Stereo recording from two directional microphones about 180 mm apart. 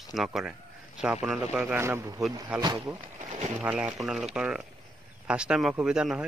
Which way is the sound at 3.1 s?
40° right (ahead or behind).